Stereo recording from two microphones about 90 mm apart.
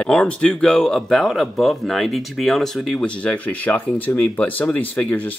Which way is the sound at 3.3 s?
20° left (ahead or behind).